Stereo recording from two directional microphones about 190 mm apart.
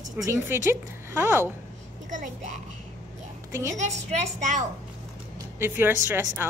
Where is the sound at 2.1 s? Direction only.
40° right (ahead or behind).